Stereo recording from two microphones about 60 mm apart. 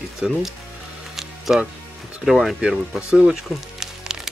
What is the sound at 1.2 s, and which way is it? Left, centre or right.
Music, centre.